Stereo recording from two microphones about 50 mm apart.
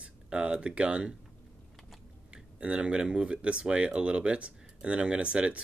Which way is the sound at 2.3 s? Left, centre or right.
Right.